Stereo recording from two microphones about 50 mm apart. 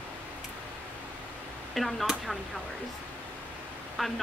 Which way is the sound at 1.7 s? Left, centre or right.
Centre.